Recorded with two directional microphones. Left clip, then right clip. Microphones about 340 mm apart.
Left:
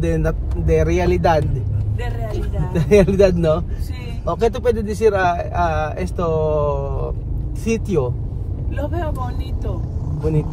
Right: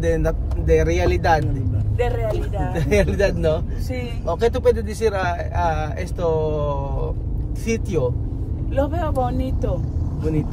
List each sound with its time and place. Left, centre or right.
0.0 s speech: centre
2.7 s speech: centre
8.7 s speech: centre